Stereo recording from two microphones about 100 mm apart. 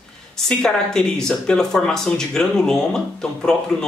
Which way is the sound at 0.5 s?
5° left (ahead or behind).